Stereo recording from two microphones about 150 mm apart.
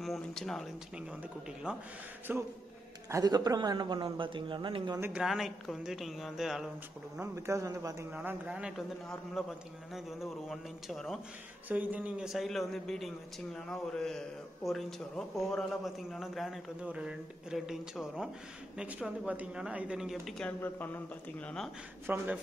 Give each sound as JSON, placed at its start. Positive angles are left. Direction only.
{"t": 0.0, "sound": "a man's voice", "side_deg": 0}
{"t": 2.3, "sound": "speech", "side_deg": -15}
{"t": 3.1, "sound": "a man's voice", "side_deg": -25}
{"t": 5.1, "sound": "a man's voice", "side_deg": -5}
{"t": 7.3, "sound": "a man's voice", "side_deg": -20}
{"t": 8.1, "sound": "speech", "side_deg": -10}
{"t": 10.5, "sound": "a man's voice", "side_deg": 0}
{"t": 11.7, "sound": "a man's voice", "side_deg": -10}
{"t": 20.6, "sound": "speech", "side_deg": 15}
{"t": 22.0, "sound": "speech", "side_deg": -10}